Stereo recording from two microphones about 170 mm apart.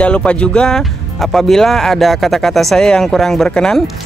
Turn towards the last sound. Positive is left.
turn(degrees=5)  # may be behind; listen again after turning